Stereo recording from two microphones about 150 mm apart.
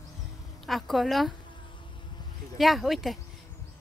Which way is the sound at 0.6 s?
Centre (ahead or behind).